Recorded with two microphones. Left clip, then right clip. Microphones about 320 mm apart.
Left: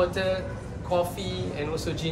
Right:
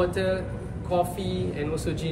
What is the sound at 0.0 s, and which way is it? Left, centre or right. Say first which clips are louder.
A man's voice: even; centre.